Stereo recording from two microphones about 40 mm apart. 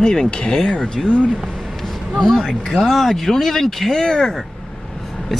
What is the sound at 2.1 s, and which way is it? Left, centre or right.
Speech, centre.